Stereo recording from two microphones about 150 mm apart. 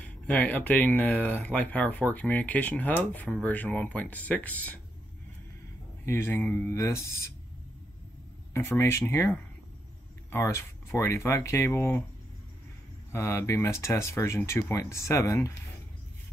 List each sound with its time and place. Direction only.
0.0 s speech: 10° left (ahead or behind)
6.0 s speech: 15° left (ahead or behind)
8.5 s speech: 15° left (ahead or behind)
13.1 s speech: 20° left (ahead or behind)